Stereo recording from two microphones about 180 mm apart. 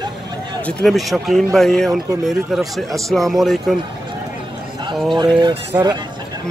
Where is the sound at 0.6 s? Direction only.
Centre (ahead or behind).